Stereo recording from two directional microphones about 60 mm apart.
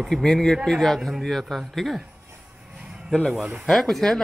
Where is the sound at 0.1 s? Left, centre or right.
Centre.